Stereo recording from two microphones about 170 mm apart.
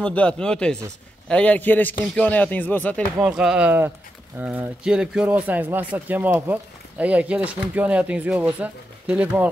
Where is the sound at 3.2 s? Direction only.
5° right (ahead or behind).